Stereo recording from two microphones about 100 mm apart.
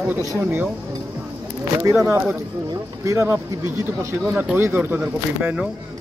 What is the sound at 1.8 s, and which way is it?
Speech, 30° right (ahead or behind).